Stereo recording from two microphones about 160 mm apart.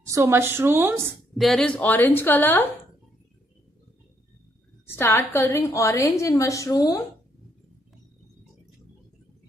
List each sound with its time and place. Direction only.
0.1 s a woman's voice: 15° right (ahead or behind)
1.4 s a woman's voice: 5° left (ahead or behind)
4.8 s a woman's voice: 15° left (ahead or behind)